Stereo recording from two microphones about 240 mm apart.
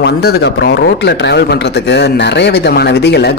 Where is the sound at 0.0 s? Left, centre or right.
Left.